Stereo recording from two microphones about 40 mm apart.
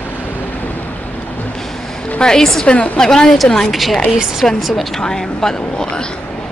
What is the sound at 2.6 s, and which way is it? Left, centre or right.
Speech, left.